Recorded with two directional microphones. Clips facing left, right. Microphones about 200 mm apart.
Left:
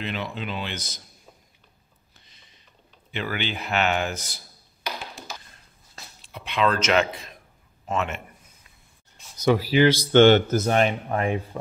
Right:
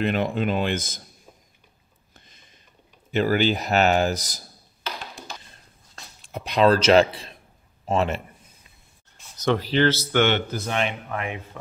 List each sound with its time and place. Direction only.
0.0 s speech: 50° right (ahead or behind)
2.1 s a sound: 50° right (ahead or behind)
3.1 s speech: 40° right (ahead or behind)
4.9 s a sound: 15° left (ahead or behind)
6.2 s a man's voice: 40° right (ahead or behind)
9.4 s speech: 10° left (ahead or behind)
10.1 s speech: 40° left (ahead or behind)